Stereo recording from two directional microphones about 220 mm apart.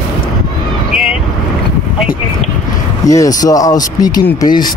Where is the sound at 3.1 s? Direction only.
15° left (ahead or behind).